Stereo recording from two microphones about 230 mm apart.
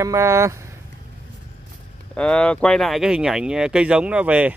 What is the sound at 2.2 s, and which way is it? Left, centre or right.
Speech, centre.